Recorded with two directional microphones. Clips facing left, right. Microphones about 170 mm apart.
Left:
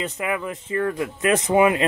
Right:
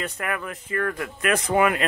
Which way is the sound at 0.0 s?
15° left (ahead or behind).